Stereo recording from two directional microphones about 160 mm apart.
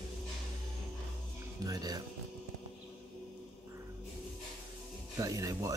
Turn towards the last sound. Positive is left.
turn(degrees=-20)  # may be behind; listen again after turning